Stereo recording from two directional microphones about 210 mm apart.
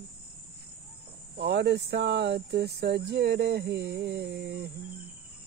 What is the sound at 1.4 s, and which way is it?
Speech, 50° right (ahead or behind).